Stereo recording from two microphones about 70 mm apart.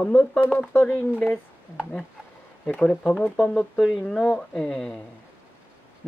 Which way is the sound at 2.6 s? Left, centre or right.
Centre.